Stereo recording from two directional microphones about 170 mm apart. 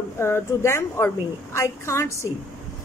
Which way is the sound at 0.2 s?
15° left (ahead or behind).